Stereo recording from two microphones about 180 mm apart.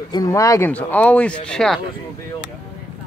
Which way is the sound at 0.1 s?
20° left (ahead or behind).